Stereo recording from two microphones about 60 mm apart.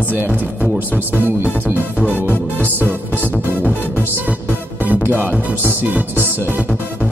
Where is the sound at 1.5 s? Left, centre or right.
Right.